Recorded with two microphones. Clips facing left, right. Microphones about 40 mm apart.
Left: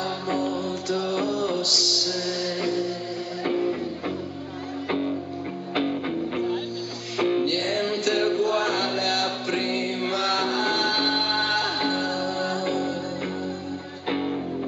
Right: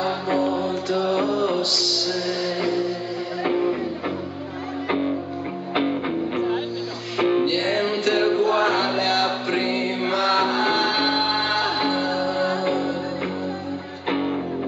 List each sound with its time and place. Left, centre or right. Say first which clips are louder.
0.0 s music: right 4 dB; right
4.8 s music: right 3 dB; right
14.0 s music: right 3 dB; right